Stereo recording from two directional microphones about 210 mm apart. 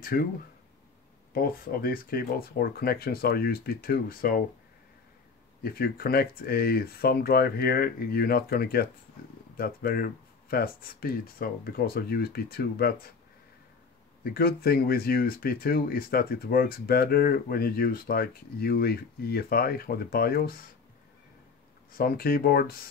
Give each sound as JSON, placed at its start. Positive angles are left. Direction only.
{"t": 0.0, "sound": "speech", "side_deg": 45}
{"t": 1.3, "sound": "speech", "side_deg": 45}
{"t": 5.6, "sound": "speech", "side_deg": 45}
{"t": 14.2, "sound": "speech", "side_deg": 45}
{"t": 21.9, "sound": "speech", "side_deg": 45}